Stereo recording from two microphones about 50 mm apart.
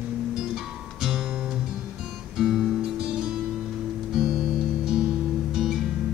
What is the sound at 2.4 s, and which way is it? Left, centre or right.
Music, centre.